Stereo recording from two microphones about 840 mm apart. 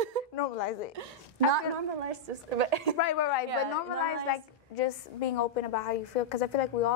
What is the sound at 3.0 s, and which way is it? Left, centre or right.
Speech, left.